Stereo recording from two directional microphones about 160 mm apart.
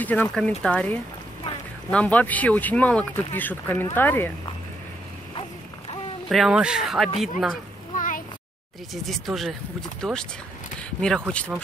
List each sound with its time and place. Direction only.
0.0 s speech: 10° left (ahead or behind)
6.2 s speech: centre (ahead or behind)
7.9 s a sound: 55° left (ahead or behind)
9.0 s speech: centre (ahead or behind)